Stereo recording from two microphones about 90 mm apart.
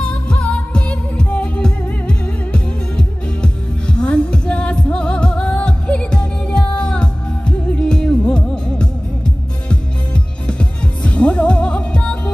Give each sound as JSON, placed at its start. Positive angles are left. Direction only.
{"t": 0.0, "sound": "music", "side_deg": 10}